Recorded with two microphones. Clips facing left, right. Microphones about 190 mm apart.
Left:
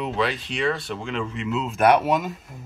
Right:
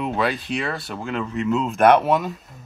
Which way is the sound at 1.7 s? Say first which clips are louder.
Right 2 dB; 10° left (ahead or behind).